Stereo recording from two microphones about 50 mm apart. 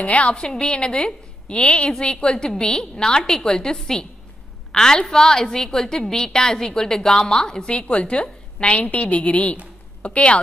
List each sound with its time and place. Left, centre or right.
0.0 s a woman's voice: left